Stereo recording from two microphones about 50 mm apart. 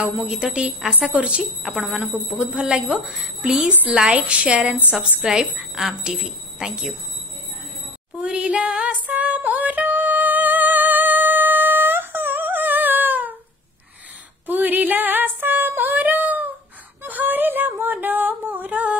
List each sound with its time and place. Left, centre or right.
0.3 s a woman's voice: centre
8.2 s a sound: right
9.2 s music: right
14.4 s female singing: right
17.0 s a sound: right
17.9 s music: right